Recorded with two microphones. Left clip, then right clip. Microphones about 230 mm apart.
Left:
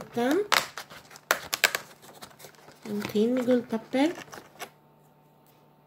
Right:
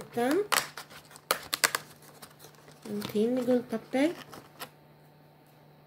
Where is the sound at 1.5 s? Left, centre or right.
Centre.